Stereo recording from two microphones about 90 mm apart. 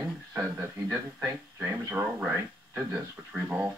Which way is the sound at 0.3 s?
30° right (ahead or behind).